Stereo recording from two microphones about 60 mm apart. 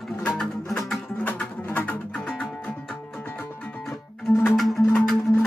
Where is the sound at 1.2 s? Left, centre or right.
Left.